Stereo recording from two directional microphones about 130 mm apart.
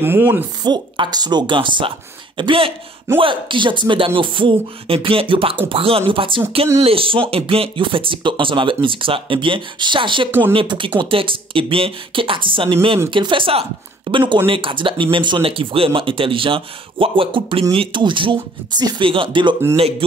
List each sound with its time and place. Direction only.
0.0 s speech: 15° right (ahead or behind)
0.7 s speech: 35° right (ahead or behind)